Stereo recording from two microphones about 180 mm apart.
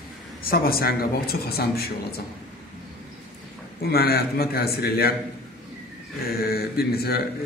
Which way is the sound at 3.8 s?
60° left (ahead or behind).